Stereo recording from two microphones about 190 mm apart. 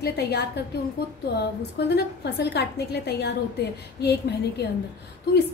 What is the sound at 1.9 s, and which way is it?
A woman's voice, 60° left (ahead or behind).